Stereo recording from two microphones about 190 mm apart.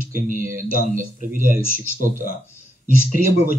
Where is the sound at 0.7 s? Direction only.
45° right (ahead or behind).